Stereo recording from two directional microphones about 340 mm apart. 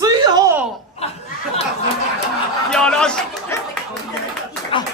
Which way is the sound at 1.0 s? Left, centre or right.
Centre.